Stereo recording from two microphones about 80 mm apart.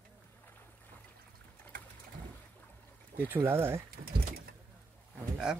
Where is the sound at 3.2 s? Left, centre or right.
Right.